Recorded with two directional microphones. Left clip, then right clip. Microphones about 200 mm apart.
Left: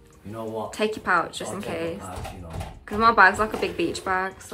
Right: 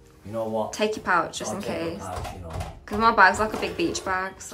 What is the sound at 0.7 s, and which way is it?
A woman's voice, 10° right (ahead or behind).